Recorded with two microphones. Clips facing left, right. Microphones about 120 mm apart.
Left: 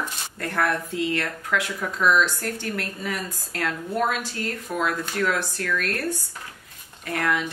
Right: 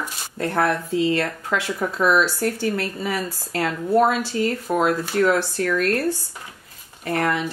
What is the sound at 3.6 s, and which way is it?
Speech, 35° right (ahead or behind).